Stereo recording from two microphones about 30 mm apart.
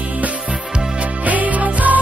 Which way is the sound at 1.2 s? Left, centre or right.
Right.